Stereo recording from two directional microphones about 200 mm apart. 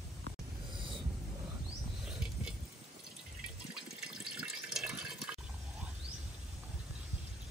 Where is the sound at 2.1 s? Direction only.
5° right (ahead or behind).